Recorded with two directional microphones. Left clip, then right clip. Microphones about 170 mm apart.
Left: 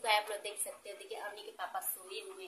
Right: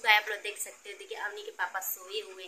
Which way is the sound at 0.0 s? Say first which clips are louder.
Right 7 dB; 10° left (ahead or behind).